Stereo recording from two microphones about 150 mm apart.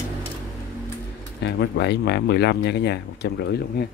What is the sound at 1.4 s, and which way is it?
Speech, 90° left.